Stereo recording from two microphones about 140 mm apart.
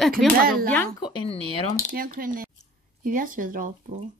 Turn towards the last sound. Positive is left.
turn(degrees=-75)  # may be behind; listen again after turning